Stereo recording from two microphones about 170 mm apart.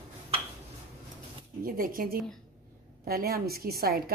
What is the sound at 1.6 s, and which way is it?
A woman's voice, 60° right (ahead or behind).